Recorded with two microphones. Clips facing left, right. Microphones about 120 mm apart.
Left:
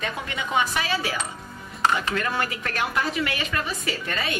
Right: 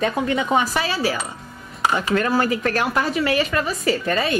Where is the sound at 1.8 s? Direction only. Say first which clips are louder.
Right 2 dB; 10° right (ahead or behind).